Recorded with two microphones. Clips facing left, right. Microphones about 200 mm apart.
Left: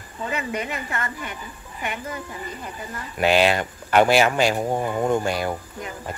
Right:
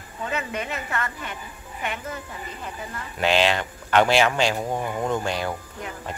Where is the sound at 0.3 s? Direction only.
10° left (ahead or behind).